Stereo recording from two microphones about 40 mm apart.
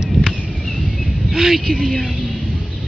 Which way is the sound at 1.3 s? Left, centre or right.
Centre.